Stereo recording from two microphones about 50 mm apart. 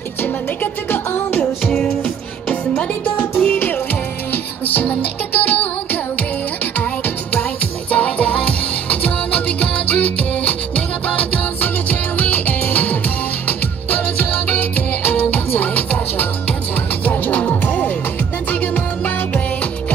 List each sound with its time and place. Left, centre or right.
1.4 s music: centre
2.7 s music: left
7.9 s music: left